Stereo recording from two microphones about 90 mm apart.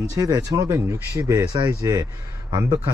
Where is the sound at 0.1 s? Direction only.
40° right (ahead or behind).